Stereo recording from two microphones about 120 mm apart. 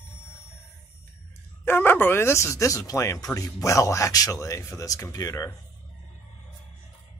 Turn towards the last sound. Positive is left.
turn(degrees=25)  # may be behind; listen again after turning